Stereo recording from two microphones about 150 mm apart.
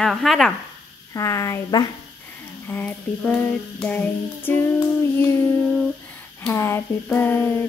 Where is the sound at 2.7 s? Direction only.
10° left (ahead or behind).